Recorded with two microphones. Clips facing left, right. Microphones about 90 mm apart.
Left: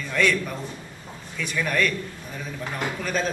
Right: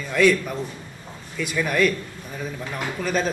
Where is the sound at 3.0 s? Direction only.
5° right (ahead or behind).